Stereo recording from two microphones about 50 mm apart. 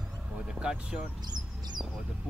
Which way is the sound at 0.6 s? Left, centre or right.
Centre.